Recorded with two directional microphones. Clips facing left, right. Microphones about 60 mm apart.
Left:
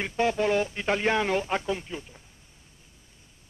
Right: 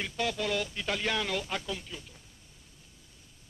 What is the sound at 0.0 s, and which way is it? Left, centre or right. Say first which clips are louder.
Speech: left 7 dB; left.